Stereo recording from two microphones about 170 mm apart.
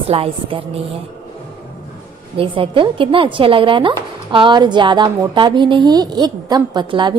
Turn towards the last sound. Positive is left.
turn(degrees=-25)  # may be behind; listen again after turning